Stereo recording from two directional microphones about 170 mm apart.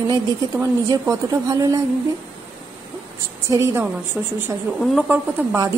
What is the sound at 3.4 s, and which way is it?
Speech, 15° right (ahead or behind).